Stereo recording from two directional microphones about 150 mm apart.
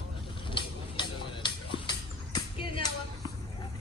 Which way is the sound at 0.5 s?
30° left (ahead or behind).